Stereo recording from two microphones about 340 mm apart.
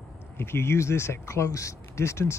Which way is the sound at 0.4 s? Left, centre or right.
Centre.